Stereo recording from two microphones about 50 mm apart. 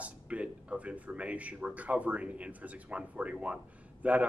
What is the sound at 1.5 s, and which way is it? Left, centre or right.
Speech, right.